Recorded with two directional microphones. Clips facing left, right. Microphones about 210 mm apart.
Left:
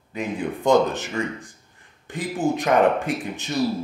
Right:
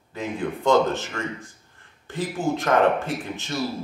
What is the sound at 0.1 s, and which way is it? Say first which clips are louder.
Speech: left 1 dB; 15° left (ahead or behind).